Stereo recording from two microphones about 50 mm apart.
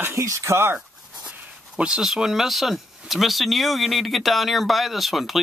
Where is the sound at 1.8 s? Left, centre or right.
Centre.